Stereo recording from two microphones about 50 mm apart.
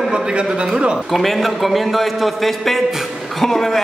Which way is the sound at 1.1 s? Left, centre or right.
Centre.